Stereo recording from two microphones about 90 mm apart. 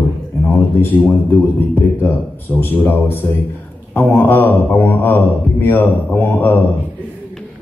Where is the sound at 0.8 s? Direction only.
25° left (ahead or behind).